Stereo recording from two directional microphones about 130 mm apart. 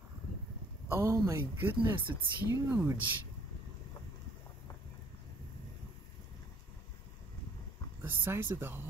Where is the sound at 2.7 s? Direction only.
15° right (ahead or behind).